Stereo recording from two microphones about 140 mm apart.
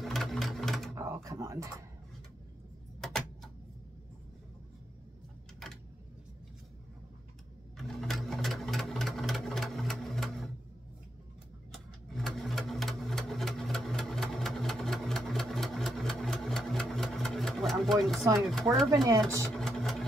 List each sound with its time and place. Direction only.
0.0 s sewing machine: centre (ahead or behind)
0.9 s drawer open or close: 20° right (ahead or behind)
3.0 s typewriter: 5° left (ahead or behind)
5.6 s a sound: 5° left (ahead or behind)
7.7 s sewing machine: centre (ahead or behind)
11.7 s sewing machine: centre (ahead or behind)
19.0 s speech: 25° right (ahead or behind)
19.5 s engine: centre (ahead or behind)